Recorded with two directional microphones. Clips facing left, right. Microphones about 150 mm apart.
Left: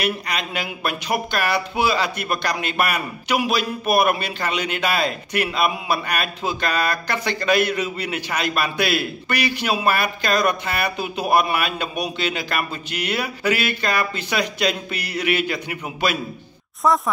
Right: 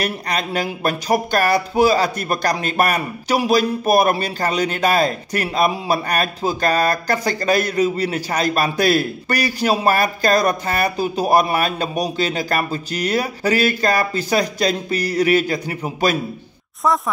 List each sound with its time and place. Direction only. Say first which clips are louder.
0.0 s speech: right 2 dB; 40° right (ahead or behind)
16.8 s speech: even; centre (ahead or behind)